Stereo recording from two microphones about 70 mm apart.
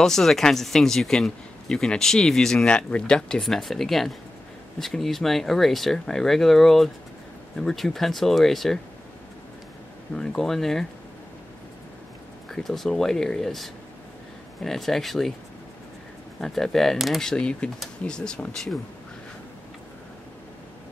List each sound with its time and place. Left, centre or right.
0.0 s speech: centre
10.1 s speech: centre
12.4 s speech: centre
16.3 s speech: centre